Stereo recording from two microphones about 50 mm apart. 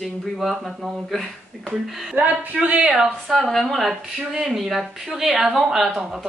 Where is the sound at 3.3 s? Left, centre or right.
Centre.